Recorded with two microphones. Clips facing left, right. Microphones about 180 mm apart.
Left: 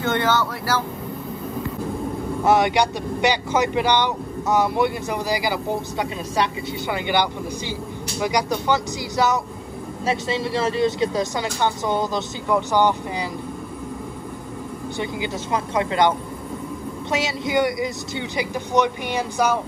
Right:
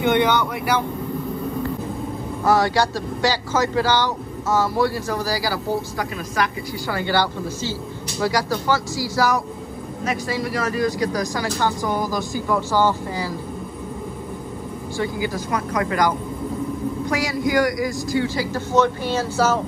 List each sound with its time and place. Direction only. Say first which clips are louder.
0.0 s speech: right 3 dB; 15° right (ahead or behind)
2.4 s speech: even; 20° left (ahead or behind)
15.0 s speech: right 3 dB; 25° left (ahead or behind)